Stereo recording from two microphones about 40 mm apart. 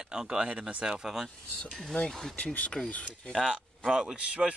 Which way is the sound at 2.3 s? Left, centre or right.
Left.